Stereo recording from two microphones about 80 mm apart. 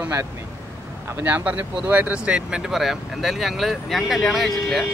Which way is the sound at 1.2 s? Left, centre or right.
Right.